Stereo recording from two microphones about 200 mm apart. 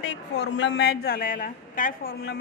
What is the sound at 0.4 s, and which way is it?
A woman's voice, 60° left (ahead or behind).